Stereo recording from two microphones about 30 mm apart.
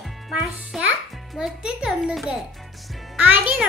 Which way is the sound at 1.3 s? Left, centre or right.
Right.